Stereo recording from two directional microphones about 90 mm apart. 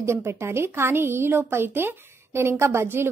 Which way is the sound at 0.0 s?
30° right (ahead or behind).